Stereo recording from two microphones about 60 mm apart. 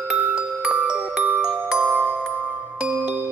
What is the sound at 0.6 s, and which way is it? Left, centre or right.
Glockenspiel, right.